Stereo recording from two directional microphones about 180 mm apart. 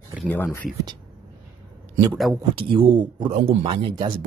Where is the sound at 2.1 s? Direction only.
Centre (ahead or behind).